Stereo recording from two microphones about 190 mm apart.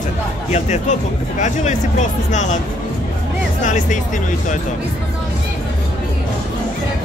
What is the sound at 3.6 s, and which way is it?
Speech, 40° left (ahead or behind).